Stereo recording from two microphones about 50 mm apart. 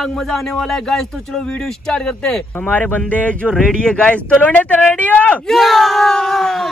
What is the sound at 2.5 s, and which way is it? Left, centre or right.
Speech, left.